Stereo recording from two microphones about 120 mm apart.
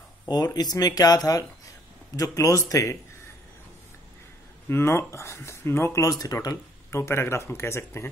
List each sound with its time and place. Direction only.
0.3 s speech: 35° left (ahead or behind)
4.6 s speech: 20° left (ahead or behind)